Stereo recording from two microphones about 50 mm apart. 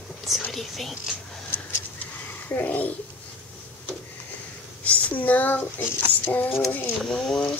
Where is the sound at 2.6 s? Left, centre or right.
Left.